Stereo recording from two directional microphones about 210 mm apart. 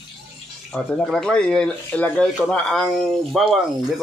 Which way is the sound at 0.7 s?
Centre (ahead or behind).